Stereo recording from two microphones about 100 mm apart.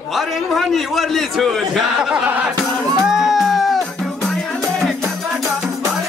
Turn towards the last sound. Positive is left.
turn(degrees=5)  # may be behind; listen again after turning